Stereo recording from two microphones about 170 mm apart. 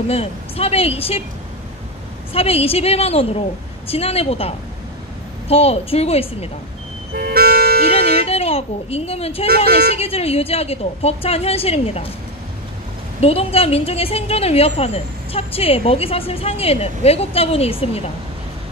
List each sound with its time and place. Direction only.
0.1 s a woman's voice: 35° left (ahead or behind)
2.3 s a woman's voice: 35° left (ahead or behind)
7.2 s music: 65° right (ahead or behind)
8.3 s a woman's voice: 35° left (ahead or behind)
13.2 s a woman's voice: 35° left (ahead or behind)